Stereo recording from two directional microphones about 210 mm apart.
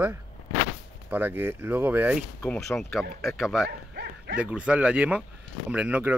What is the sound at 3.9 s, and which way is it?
Dog, 50° right (ahead or behind).